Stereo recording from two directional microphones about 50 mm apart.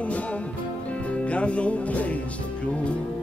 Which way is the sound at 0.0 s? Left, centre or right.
Left.